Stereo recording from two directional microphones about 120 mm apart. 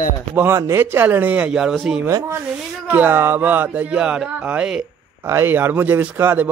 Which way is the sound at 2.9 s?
15° right (ahead or behind).